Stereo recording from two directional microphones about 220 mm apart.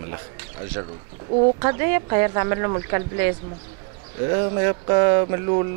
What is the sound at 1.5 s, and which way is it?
Speech, 15° right (ahead or behind).